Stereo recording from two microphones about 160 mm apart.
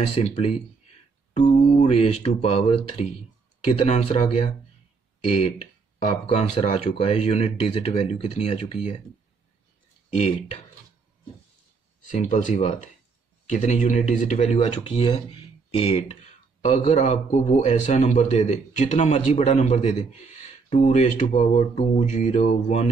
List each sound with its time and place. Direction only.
0.1 s speech: 40° left (ahead or behind)
6.2 s speech: 35° left (ahead or behind)
10.0 s speech: 40° left (ahead or behind)
12.1 s a man's voice: 50° left (ahead or behind)
16.6 s a man's voice: 50° left (ahead or behind)